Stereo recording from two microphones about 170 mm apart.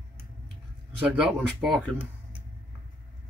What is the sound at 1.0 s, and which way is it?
Speech, 5° right (ahead or behind).